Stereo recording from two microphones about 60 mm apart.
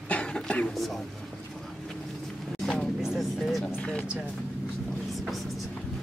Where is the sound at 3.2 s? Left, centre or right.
Centre.